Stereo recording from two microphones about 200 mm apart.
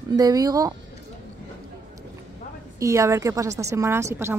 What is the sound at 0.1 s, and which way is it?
Speech, 20° right (ahead or behind).